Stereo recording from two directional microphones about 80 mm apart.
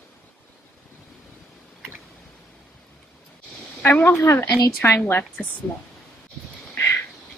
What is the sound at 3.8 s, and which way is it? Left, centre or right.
Speech, left.